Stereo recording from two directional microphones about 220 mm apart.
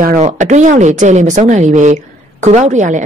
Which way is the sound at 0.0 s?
35° right (ahead or behind).